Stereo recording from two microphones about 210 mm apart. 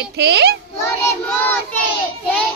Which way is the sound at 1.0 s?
10° left (ahead or behind).